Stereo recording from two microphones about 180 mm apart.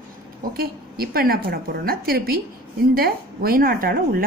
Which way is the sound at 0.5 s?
55° right (ahead or behind).